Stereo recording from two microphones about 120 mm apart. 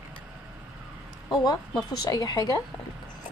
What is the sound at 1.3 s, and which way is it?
A woman's voice, 35° left (ahead or behind).